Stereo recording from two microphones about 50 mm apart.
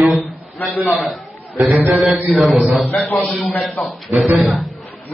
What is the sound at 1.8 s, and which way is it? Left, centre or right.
A man's voice, centre.